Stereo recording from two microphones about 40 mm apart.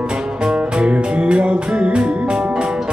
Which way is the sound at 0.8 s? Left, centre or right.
Right.